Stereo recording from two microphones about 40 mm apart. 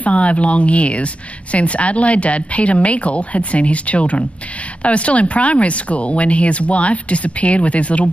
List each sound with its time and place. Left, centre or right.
0.0 s speech: left